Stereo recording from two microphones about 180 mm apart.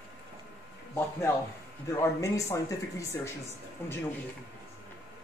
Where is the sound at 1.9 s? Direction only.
15° left (ahead or behind).